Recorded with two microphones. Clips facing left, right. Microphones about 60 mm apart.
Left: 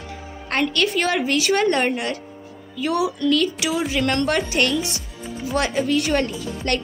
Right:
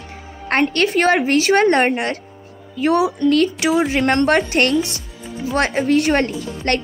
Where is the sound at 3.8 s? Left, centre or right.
Right.